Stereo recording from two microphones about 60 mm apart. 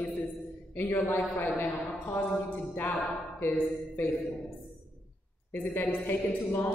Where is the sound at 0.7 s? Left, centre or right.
Left.